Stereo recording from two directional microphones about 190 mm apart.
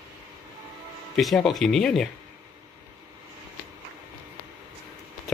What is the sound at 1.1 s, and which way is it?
Speech, centre (ahead or behind).